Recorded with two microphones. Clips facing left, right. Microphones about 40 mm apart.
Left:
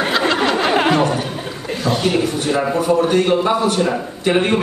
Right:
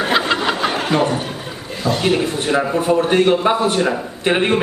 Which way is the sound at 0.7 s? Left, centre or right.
Left.